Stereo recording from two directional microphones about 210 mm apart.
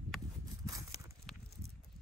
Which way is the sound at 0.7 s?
15° right (ahead or behind).